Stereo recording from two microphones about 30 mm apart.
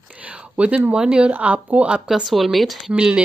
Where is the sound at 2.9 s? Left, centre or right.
Right.